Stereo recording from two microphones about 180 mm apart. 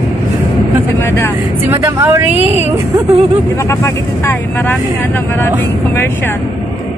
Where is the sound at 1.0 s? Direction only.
15° left (ahead or behind).